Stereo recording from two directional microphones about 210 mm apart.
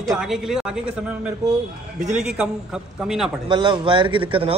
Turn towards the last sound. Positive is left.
turn(degrees=-25)  # may be behind; listen again after turning